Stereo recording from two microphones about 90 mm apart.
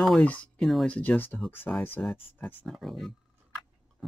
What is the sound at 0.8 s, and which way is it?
Speech, 15° left (ahead or behind).